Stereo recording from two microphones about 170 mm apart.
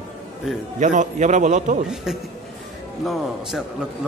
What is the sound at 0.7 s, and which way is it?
A man's voice, 45° right (ahead or behind).